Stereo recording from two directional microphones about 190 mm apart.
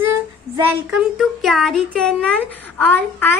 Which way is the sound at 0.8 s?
Centre (ahead or behind).